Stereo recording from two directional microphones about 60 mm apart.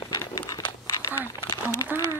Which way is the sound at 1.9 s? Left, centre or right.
Right.